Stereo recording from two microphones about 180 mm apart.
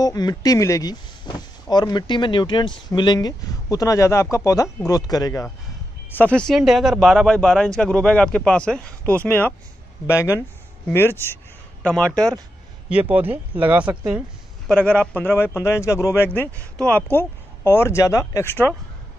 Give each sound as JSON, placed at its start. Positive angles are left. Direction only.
{"t": 0.0, "sound": "speech", "side_deg": 20}
{"t": 6.1, "sound": "a man's voice", "side_deg": 5}
{"t": 12.9, "sound": "speech", "side_deg": -10}
{"t": 14.7, "sound": "a man's voice", "side_deg": 5}